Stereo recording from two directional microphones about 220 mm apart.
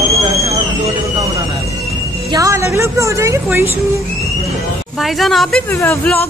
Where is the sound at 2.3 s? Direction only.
15° right (ahead or behind).